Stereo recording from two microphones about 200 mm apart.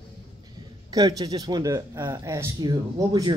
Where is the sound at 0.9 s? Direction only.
20° right (ahead or behind).